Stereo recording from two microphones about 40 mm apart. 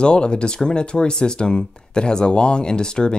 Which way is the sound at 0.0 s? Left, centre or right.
Left.